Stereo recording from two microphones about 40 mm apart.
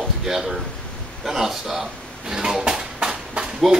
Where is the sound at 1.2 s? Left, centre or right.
Centre.